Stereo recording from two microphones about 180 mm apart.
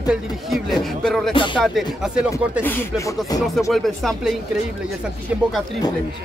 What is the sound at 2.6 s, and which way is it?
Speech, 15° left (ahead or behind).